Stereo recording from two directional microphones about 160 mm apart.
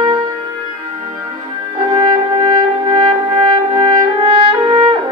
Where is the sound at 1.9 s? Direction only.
30° right (ahead or behind).